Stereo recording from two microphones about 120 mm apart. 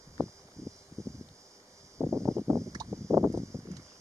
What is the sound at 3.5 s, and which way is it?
Clip-clop, 25° right (ahead or behind).